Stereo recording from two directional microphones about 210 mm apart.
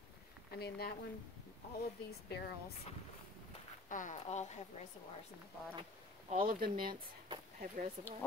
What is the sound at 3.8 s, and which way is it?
Speech, 40° left (ahead or behind).